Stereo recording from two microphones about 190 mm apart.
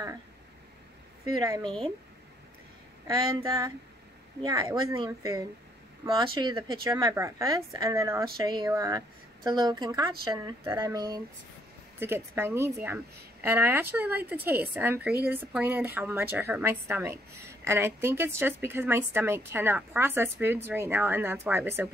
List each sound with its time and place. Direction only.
1.4 s a woman's voice: 20° right (ahead or behind)
3.4 s a woman's voice: 20° right (ahead or behind)